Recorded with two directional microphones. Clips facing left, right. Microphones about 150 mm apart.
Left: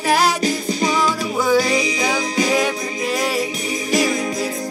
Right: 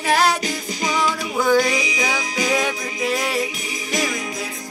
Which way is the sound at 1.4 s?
5° left (ahead or behind).